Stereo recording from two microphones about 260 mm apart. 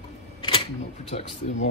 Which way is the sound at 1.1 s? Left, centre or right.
Left.